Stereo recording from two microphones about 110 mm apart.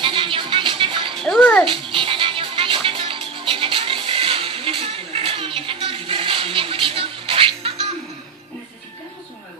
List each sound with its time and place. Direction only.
0.0 s music: 50° right (ahead or behind)
1.2 s bathtub: 10° left (ahead or behind)
1.7 s music: 50° right (ahead or behind)